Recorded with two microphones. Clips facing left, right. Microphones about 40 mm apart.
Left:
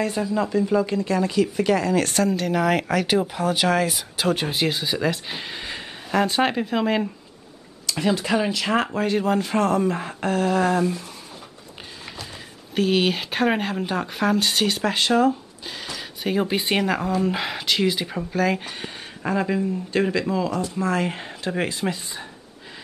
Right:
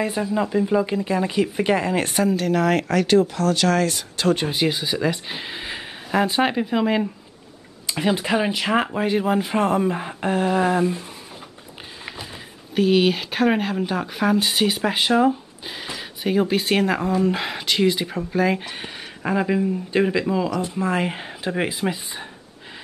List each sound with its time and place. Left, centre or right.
0.0 s speech: centre
2.1 s speech: centre
7.8 s speech: right
12.7 s speech: centre
16.3 s speech: centre